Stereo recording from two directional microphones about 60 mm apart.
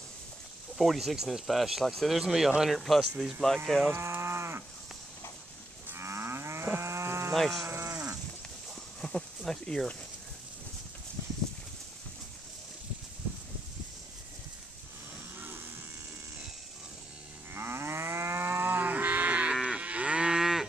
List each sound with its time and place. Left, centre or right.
0.7 s speech: centre
3.4 s speech: centre
3.9 s cattle: right
5.9 s moo: right
6.7 s livestock: right
7.3 s speech: centre
7.6 s livestock: right
9.0 s a sound: centre
9.4 s speech: centre
15.4 s a sound: right
17.6 s livestock: right
19.5 s moo: centre